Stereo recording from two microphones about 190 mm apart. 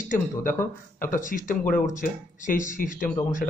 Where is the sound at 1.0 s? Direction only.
45° left (ahead or behind).